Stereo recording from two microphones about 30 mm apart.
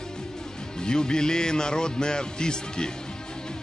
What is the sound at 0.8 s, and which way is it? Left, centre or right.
A man's voice, left.